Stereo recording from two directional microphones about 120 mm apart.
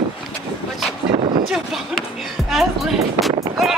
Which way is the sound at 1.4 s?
Centre (ahead or behind).